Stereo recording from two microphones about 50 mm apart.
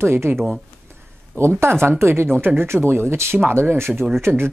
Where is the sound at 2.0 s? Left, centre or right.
Right.